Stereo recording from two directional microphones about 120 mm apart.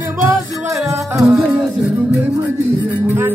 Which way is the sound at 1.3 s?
5° right (ahead or behind).